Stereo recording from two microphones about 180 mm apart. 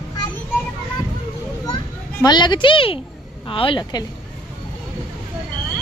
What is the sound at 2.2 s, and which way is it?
A woman's voice, 25° left (ahead or behind).